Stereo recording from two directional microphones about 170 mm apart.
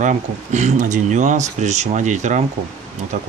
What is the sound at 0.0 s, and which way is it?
Speech, 45° right (ahead or behind).